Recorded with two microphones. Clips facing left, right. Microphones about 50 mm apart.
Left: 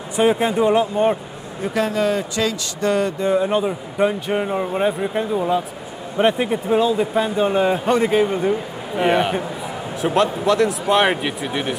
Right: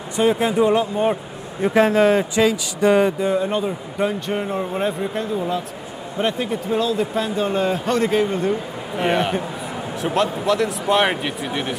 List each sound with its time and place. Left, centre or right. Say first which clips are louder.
0.1 s speech: left 1 dB; centre
1.6 s a man's voice: right 5 dB; right
2.3 s speech: right 4 dB; centre
3.2 s speech: left 2 dB; centre